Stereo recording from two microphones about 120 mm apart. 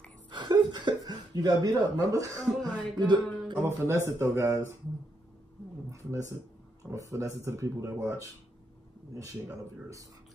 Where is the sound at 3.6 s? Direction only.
20° right (ahead or behind).